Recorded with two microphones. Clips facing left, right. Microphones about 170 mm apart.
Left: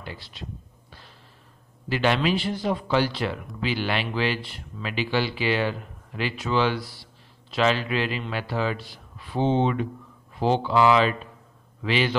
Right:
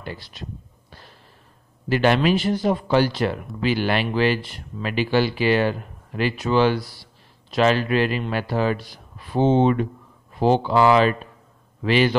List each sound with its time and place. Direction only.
0.0 s speech: 45° right (ahead or behind)
1.9 s speech: 45° right (ahead or behind)